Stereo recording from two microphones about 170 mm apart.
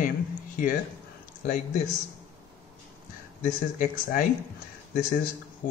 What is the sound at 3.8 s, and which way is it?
Speech, 55° left (ahead or behind).